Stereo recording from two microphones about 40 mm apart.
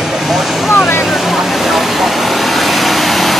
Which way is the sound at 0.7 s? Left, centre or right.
Left.